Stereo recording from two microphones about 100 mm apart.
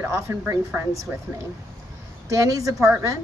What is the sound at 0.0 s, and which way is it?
Speech, 30° right (ahead or behind).